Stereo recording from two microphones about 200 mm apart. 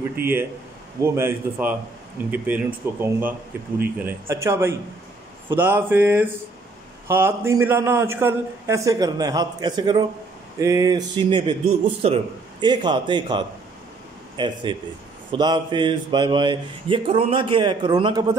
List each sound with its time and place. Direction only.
0.1 s a man's voice: 10° right (ahead or behind)